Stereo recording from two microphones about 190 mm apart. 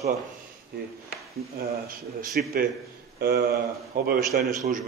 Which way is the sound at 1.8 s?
50° right (ahead or behind).